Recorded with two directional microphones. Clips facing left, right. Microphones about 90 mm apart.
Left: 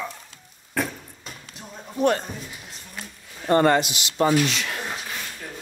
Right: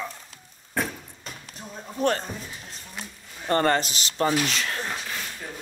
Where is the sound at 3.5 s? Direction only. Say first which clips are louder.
Left 4 dB; 30° left (ahead or behind).